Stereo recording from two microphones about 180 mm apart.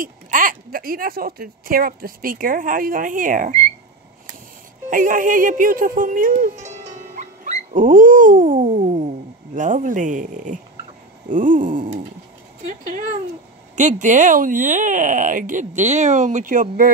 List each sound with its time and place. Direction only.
0.0 s speech: 50° right (ahead or behind)
4.8 s speech: 45° right (ahead or behind)